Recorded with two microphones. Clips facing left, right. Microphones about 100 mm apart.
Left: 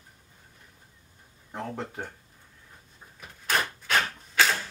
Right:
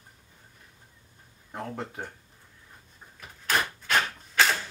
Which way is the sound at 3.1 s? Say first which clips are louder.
Even; centre (ahead or behind).